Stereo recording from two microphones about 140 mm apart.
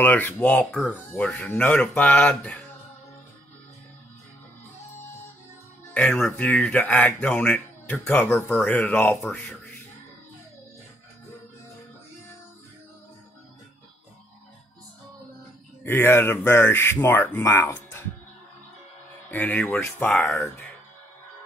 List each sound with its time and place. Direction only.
0.0 s speech: 10° left (ahead or behind)
5.9 s speech: 5° left (ahead or behind)
15.8 s speech: 15° left (ahead or behind)
19.3 s speech: 10° left (ahead or behind)